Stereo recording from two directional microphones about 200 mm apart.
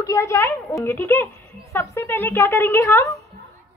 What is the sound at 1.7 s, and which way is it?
A woman's voice, 10° left (ahead or behind).